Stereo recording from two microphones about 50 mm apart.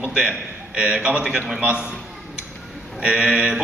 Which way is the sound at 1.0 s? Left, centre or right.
Centre.